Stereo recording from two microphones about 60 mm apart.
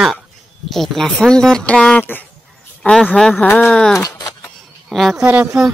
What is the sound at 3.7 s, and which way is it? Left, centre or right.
Speech, centre.